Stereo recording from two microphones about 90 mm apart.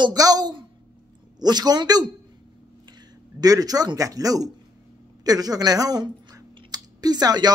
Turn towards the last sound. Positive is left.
turn(degrees=-50)  # may be behind; listen again after turning